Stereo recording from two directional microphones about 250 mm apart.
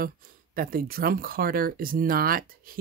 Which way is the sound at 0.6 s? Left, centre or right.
Right.